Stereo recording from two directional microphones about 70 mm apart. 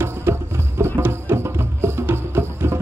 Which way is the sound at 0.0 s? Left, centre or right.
Right.